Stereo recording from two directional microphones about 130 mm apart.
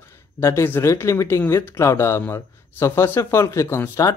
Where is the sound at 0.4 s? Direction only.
20° left (ahead or behind).